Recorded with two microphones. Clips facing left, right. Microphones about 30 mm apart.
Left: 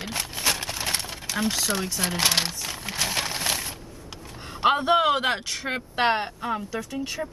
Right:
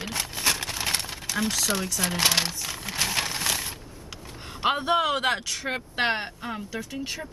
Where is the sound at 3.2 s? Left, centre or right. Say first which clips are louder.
Left 1 dB; centre.